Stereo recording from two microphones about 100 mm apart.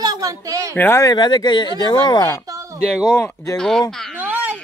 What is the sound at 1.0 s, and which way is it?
Speech, 45° left (ahead or behind).